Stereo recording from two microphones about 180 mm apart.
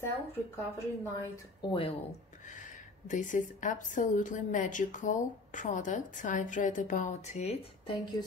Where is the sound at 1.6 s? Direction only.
30° left (ahead or behind).